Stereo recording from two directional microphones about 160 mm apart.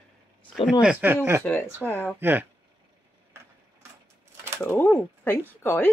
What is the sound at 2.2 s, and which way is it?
Speech, 10° right (ahead or behind).